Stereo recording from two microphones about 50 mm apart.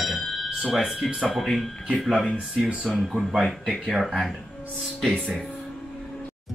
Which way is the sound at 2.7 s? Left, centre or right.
Centre.